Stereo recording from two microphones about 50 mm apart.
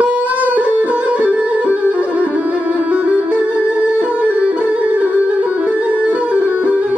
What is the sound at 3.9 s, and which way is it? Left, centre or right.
Music, right.